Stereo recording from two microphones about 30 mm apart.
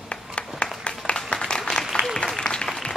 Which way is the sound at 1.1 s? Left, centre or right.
Left.